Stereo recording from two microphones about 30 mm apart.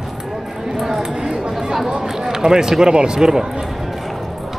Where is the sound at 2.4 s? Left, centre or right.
Right.